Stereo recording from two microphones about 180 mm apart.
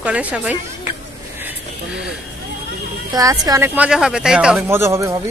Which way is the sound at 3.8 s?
5° right (ahead or behind).